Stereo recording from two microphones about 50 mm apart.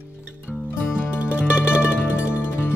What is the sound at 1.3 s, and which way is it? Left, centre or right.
Music, right.